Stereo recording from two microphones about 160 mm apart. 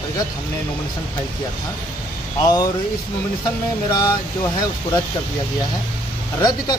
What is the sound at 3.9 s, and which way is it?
Speech, 20° left (ahead or behind).